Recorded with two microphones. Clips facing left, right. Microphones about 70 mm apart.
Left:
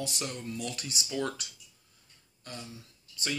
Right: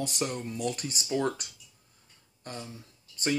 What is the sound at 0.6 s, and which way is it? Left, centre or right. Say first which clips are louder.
Speech: right 5 dB; right.